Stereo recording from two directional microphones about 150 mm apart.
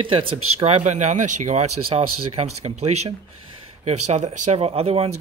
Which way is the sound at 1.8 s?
40° right (ahead or behind).